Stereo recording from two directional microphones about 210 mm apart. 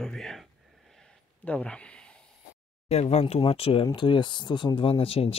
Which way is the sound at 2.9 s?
30° left (ahead or behind).